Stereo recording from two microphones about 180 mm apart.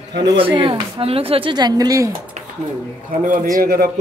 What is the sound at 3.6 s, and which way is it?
Speech, 60° right (ahead or behind).